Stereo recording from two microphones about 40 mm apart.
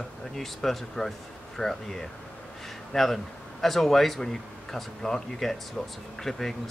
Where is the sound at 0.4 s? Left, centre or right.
Centre.